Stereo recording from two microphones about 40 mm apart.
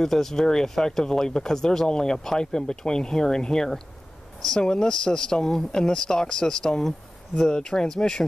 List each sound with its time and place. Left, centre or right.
0.0 s speech: centre